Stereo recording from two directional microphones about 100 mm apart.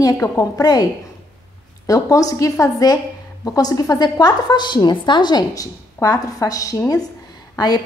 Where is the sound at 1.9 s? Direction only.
35° left (ahead or behind).